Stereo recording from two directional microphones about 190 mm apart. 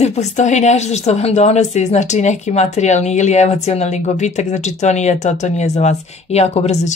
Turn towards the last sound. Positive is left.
turn(degrees=35)  # may be behind; listen again after turning